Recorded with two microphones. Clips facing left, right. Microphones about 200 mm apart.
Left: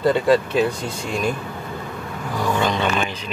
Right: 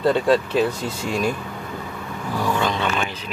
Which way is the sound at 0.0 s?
Centre (ahead or behind).